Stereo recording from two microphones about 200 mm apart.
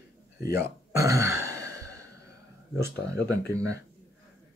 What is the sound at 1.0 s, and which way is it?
Burping, 15° right (ahead or behind).